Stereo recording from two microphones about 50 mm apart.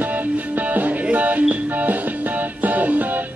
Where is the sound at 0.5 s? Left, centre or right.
Right.